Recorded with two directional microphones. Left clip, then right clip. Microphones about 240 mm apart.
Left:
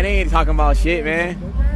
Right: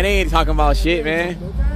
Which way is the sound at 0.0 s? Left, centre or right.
Centre.